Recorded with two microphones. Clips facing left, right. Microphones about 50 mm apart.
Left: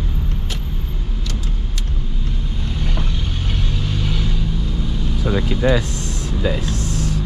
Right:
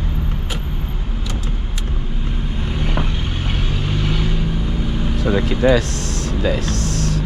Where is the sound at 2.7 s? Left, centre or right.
Right.